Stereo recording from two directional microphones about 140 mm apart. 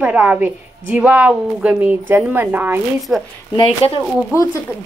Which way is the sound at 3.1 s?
Centre (ahead or behind).